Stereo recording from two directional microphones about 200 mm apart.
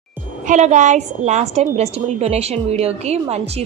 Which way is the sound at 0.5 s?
35° right (ahead or behind).